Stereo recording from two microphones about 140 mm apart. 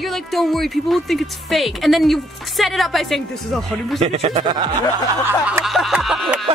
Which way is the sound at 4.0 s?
50° right (ahead or behind).